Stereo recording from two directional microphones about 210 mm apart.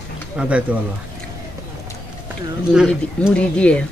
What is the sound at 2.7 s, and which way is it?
Speech, 5° right (ahead or behind).